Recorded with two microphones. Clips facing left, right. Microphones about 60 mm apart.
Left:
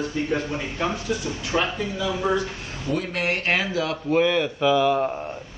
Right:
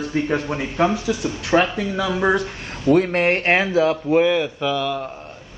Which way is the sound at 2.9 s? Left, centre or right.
Right.